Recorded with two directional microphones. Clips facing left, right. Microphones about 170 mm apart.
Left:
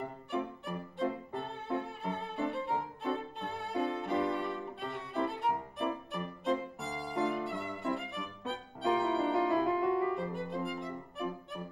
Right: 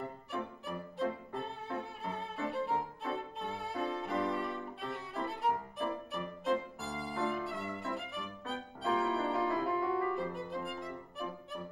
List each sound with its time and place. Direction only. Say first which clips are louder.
0.3 s violin: left 5 dB; centre (ahead or behind)
9.3 s music: left 4 dB; 20° left (ahead or behind)
10.1 s music: left 2 dB; centre (ahead or behind)